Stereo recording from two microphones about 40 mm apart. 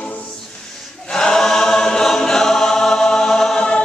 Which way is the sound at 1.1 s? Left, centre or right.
Centre.